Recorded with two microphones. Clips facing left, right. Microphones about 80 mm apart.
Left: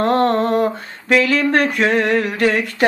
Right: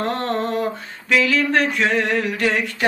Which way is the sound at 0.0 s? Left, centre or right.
Left.